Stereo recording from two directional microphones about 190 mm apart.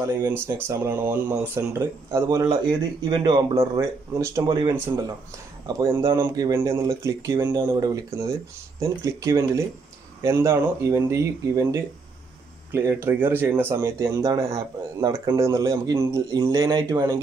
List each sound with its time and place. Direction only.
0.0 s speech: 10° right (ahead or behind)